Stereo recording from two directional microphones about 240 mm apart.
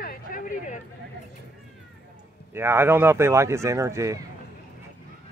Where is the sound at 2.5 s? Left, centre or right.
Centre.